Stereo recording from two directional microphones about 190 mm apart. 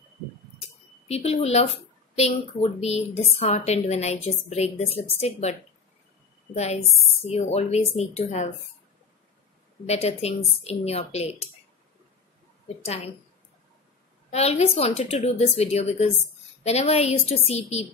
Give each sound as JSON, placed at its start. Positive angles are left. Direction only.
{"t": 1.0, "sound": "a woman's voice", "side_deg": 35}
{"t": 9.8, "sound": "a woman's voice", "side_deg": 35}
{"t": 12.6, "sound": "a woman's voice", "side_deg": 35}
{"t": 14.3, "sound": "a woman's voice", "side_deg": 35}